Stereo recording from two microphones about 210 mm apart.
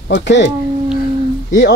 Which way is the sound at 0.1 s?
55° left (ahead or behind).